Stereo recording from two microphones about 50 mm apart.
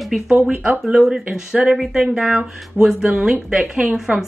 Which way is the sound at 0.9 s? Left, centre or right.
Centre.